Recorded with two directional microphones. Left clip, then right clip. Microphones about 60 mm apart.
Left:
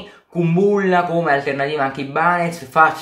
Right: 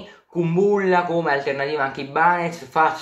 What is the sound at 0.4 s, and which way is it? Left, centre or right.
Speech, right.